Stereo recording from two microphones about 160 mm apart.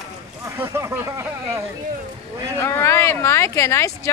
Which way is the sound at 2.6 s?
15° left (ahead or behind).